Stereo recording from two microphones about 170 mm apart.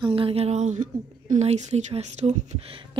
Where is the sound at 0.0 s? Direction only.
35° right (ahead or behind).